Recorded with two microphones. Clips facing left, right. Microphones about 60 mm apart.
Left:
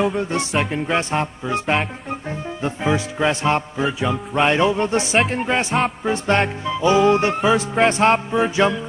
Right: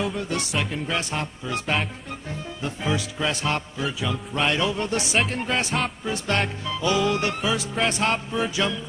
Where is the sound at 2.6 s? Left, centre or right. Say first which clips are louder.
Left 6 dB; left.